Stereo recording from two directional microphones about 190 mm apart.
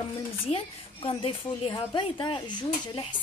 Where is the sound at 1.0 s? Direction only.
30° left (ahead or behind).